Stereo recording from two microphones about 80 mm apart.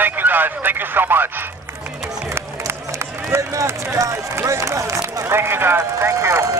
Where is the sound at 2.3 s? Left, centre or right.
Right.